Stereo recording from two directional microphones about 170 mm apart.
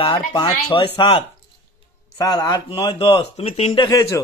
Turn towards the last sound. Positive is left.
turn(degrees=20)  # may be behind; listen again after turning